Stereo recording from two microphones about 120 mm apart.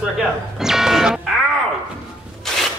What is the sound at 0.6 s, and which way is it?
Music, 5° right (ahead or behind).